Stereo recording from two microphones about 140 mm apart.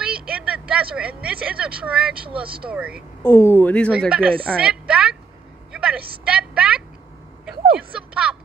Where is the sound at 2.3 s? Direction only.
40° right (ahead or behind).